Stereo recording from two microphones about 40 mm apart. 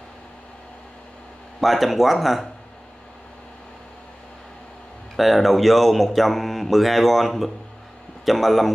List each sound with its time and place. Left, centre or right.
1.6 s speech: centre
5.1 s speech: centre